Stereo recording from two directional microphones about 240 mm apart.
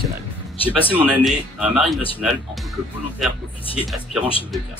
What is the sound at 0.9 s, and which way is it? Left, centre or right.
Speech, centre.